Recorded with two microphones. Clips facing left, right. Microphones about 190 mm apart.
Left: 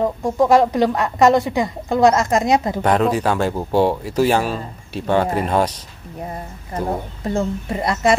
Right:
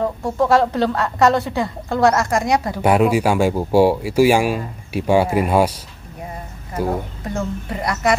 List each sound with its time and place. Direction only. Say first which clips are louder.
0.0 s a woman's voice: left 2 dB; 15° left (ahead or behind)
2.8 s speech: right 2 dB; 10° right (ahead or behind)
7.2 s speech: left 5 dB; 25° left (ahead or behind)